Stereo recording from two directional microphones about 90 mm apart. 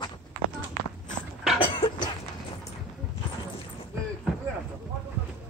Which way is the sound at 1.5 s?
85° left.